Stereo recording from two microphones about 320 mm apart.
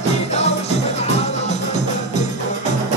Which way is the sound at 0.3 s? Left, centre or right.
Centre.